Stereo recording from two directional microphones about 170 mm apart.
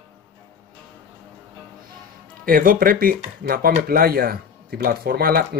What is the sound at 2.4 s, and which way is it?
Speech, 55° right (ahead or behind).